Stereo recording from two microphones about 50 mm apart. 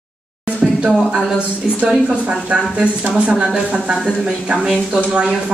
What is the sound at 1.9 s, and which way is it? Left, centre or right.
Speech, right.